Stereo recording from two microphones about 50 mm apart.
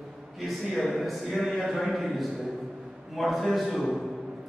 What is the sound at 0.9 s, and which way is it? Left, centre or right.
A man's voice, centre.